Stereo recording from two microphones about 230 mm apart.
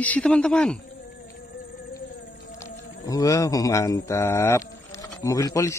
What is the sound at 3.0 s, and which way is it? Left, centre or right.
Speech, centre.